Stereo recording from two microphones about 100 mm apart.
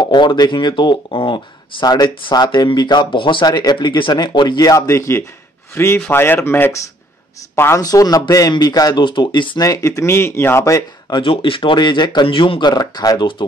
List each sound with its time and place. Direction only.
0.0 s speech: 50° left (ahead or behind); by 7.8 s 25° left (ahead or behind)
7.8 s speech: 40° left (ahead or behind)
9.6 s speech: 35° left (ahead or behind)
10.6 s speech: 40° left (ahead or behind)
11.2 s speech: 60° left (ahead or behind); by 13.3 s 45° left (ahead or behind)